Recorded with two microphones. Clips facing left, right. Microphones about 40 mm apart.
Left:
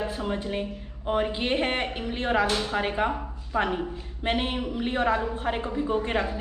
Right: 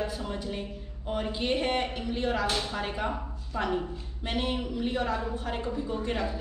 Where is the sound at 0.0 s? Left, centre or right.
Left.